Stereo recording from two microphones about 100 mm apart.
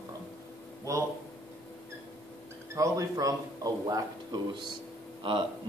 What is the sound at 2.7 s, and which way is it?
Speech, 35° right (ahead or behind).